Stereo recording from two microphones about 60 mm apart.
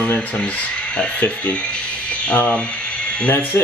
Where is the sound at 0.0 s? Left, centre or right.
Centre.